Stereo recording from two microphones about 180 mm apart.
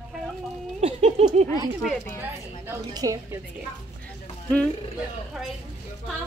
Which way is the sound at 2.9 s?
20° right (ahead or behind).